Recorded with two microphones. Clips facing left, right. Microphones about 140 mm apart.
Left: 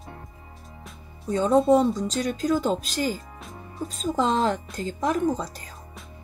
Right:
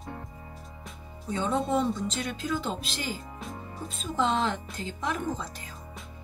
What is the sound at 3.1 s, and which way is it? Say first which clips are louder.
Music: even; centre (ahead or behind).